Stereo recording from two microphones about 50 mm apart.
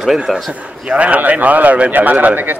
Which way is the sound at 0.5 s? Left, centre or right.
Right.